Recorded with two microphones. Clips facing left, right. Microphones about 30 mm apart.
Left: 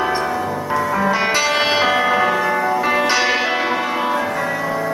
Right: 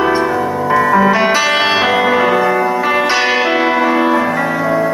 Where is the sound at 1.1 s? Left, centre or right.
Centre.